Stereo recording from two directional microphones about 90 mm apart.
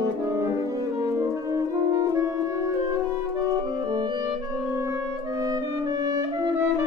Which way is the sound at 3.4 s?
40° right (ahead or behind).